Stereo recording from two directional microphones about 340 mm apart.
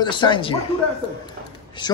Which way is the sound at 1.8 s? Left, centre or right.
Centre.